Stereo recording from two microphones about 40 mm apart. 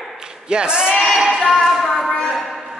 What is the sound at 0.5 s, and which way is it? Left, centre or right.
Speech, right.